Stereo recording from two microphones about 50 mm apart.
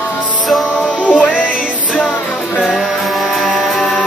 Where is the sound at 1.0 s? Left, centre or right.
Left.